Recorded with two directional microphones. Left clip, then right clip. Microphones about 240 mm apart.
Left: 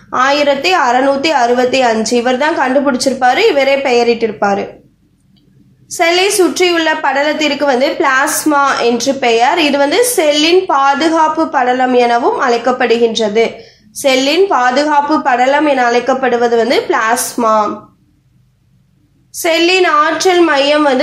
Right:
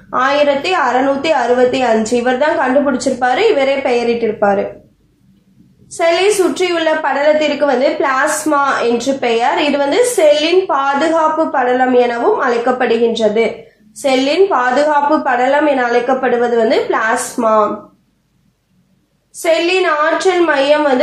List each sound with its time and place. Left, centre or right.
0.1 s a woman's voice: left
5.9 s a woman's voice: left
19.4 s a woman's voice: left